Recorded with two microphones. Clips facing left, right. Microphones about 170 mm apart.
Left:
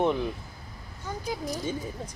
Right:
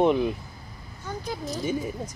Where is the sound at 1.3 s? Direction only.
15° left (ahead or behind).